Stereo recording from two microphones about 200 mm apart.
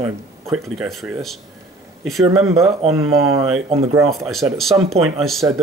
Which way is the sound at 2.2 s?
15° right (ahead or behind).